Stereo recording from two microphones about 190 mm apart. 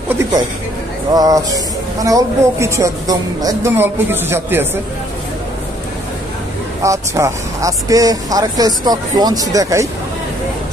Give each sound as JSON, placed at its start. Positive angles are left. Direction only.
{"t": 0.1, "sound": "a woman's voice", "side_deg": -20}
{"t": 6.8, "sound": "speech", "side_deg": -15}